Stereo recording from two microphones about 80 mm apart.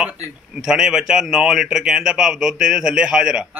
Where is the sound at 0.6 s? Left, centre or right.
Centre.